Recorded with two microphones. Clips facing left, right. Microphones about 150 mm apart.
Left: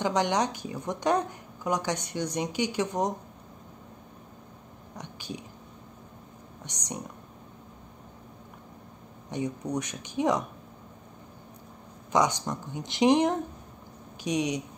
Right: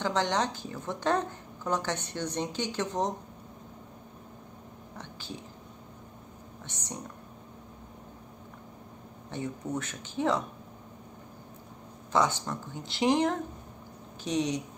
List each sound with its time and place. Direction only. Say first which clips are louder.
0.0 s speech: left 2 dB; 15° left (ahead or behind)
4.9 s whispering: left 3 dB; 15° left (ahead or behind)
6.6 s speech: left 3 dB; 15° left (ahead or behind)
9.3 s speech: left 3 dB; 15° left (ahead or behind)
12.1 s speech: left 2 dB; 15° left (ahead or behind)